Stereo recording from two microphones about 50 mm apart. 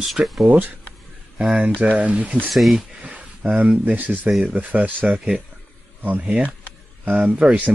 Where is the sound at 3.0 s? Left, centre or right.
Centre.